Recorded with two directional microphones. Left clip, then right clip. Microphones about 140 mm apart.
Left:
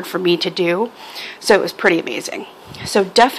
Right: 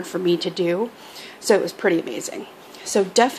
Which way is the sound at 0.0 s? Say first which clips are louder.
Left 4 dB; 15° left (ahead or behind).